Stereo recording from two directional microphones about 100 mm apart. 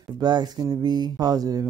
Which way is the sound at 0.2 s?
45° right (ahead or behind).